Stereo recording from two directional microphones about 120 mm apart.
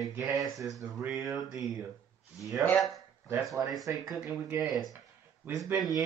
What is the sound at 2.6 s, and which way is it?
Speech, centre (ahead or behind).